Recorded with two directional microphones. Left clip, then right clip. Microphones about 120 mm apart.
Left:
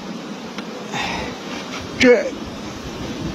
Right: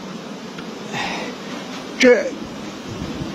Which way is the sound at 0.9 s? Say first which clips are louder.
Left 1 dB; 15° right (ahead or behind).